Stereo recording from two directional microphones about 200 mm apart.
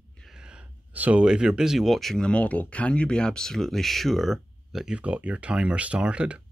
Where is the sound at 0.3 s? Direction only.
5° right (ahead or behind).